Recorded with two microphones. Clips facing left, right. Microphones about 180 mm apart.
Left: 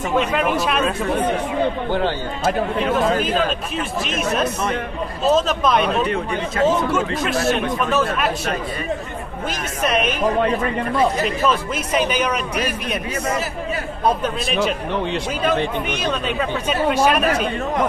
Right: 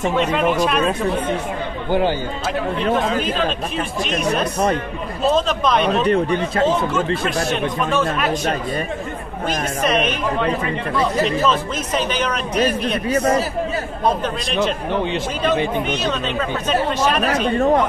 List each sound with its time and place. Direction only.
0.1 s speech: 5° left (ahead or behind)
1.9 s speech: 10° right (ahead or behind)
3.2 s speech: 5° left (ahead or behind)
6.0 s speech: 35° right (ahead or behind)
7.2 s speech: 5° left (ahead or behind)
9.8 s speech: 5° left (ahead or behind)
11.2 s speech: 10° left (ahead or behind)
13.1 s a man's voice: 30° right (ahead or behind)
14.0 s speech: 5° left (ahead or behind)
15.9 s speech: 10° left (ahead or behind)
17.2 s speech: 35° right (ahead or behind)